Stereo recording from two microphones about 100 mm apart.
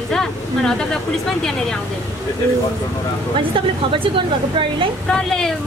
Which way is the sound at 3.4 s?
60° right (ahead or behind).